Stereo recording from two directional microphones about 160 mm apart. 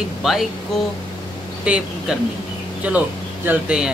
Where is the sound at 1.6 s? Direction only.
5° right (ahead or behind).